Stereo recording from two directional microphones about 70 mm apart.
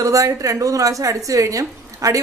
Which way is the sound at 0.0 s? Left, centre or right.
Right.